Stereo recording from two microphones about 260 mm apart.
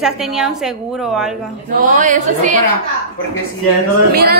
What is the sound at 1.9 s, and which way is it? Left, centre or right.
Speech, right.